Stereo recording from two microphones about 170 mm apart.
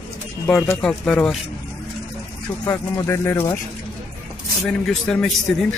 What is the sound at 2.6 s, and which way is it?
Speech, 15° left (ahead or behind).